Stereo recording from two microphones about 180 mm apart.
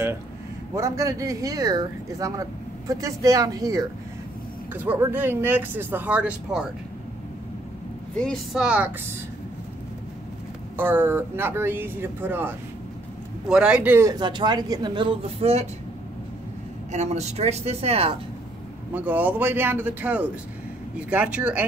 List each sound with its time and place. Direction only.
0.7 s speech: 15° right (ahead or behind)
8.2 s a woman's voice: centre (ahead or behind)
10.8 s speech: 10° right (ahead or behind); by 15.7 s 35° right (ahead or behind)
16.9 s speech: 40° right (ahead or behind)
18.9 s speech: 10° right (ahead or behind)